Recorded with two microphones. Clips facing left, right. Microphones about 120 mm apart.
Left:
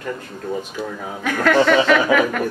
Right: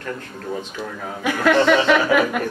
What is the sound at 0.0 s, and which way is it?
Speech, 5° left (ahead or behind).